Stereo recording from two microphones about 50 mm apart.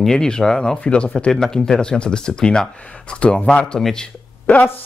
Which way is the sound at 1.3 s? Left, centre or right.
Centre.